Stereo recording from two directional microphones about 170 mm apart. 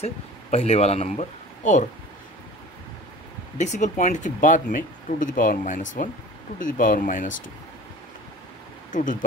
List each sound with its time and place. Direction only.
0.0 s speech: 40° left (ahead or behind)
3.5 s speech: 45° left (ahead or behind)
8.9 s speech: 50° left (ahead or behind)